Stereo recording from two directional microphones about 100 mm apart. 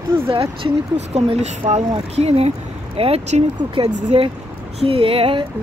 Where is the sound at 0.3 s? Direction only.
65° right (ahead or behind); by 2.5 s 90° right.